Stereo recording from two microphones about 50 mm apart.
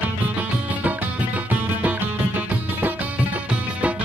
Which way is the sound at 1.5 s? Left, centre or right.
Right.